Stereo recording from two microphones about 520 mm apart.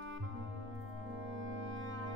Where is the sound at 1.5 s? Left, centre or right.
Right.